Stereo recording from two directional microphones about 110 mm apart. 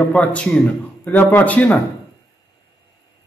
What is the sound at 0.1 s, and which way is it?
A man's voice, 10° left (ahead or behind).